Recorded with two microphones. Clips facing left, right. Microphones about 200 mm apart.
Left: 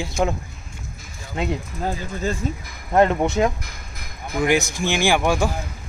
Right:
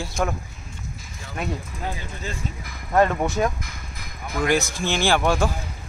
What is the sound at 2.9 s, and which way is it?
Speech, 20° left (ahead or behind).